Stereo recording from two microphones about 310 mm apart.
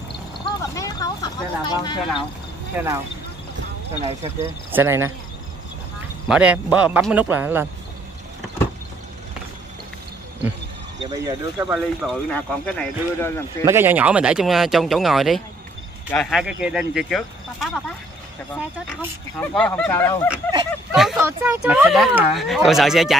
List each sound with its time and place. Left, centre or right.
0.7 s speech: centre
2.8 s speech: centre
4.0 s speech: centre
4.7 s speech: centre
6.2 s speech: centre
11.1 s speech: centre
13.7 s speech: centre